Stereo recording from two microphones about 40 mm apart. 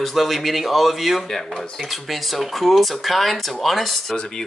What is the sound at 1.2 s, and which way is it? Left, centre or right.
Speech, centre.